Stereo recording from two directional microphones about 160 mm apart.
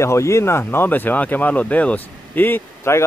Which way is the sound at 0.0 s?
15° left (ahead or behind).